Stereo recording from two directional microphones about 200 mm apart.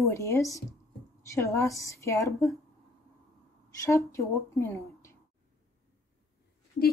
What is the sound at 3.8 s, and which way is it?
A woman's voice, 15° left (ahead or behind).